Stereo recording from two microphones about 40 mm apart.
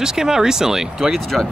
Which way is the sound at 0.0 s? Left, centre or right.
Centre.